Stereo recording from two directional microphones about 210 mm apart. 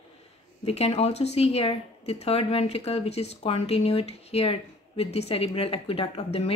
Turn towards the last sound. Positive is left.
turn(degrees=30)  # may be behind; listen again after turning